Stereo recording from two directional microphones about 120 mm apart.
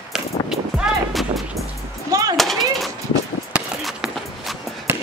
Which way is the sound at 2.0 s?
30° right (ahead or behind).